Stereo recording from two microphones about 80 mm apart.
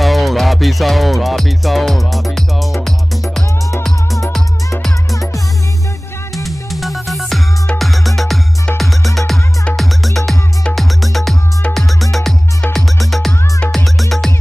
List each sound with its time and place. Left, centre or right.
0.0 s music: centre
5.1 s music: left
6.3 s music: centre